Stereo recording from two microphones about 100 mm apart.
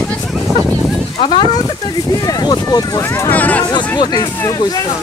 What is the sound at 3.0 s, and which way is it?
Speech, 25° left (ahead or behind).